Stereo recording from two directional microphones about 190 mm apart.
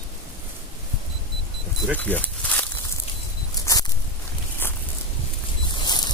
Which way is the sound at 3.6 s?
20° left (ahead or behind).